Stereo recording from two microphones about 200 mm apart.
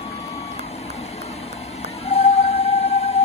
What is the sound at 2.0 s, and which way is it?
Music, 30° left (ahead or behind).